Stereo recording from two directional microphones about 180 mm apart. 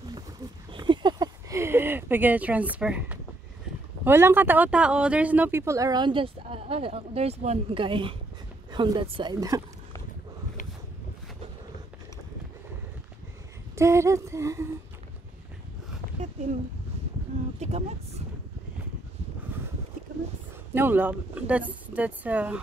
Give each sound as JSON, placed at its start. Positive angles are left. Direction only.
{"t": 0.7, "sound": "speech", "side_deg": -25}
{"t": 13.7, "sound": "speech", "side_deg": -15}
{"t": 17.6, "sound": "speech", "side_deg": -35}
{"t": 20.7, "sound": "speech", "side_deg": -10}